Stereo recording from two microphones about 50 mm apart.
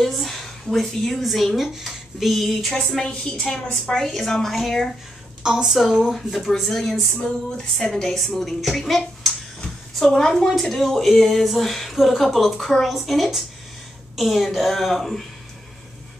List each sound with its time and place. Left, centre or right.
0.0 s a woman's voice: centre
5.4 s speech: centre
6.1 s a woman's voice: centre
7.2 s a sound: centre
7.7 s a woman's voice: centre